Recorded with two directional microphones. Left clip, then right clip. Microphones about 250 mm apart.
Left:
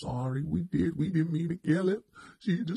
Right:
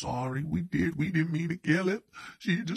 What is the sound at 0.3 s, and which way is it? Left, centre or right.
Speech, centre.